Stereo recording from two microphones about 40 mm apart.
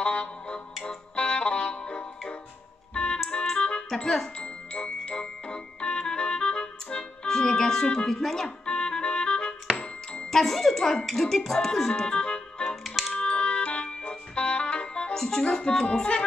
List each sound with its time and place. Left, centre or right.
0.0 s music: left
3.9 s speech: centre
4.4 s music: left
7.2 s speech: centre
7.8 s music: left
8.1 s speech: centre
8.6 s music: left
10.3 s speech: centre
11.9 s music: left
12.8 s music: centre
13.1 s music: left
15.1 s speech: centre
15.4 s music: centre